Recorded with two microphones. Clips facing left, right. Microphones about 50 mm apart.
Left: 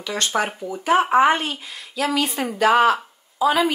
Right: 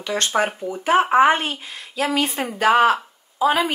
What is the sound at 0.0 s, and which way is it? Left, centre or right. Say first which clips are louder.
Speech: right 2 dB; right.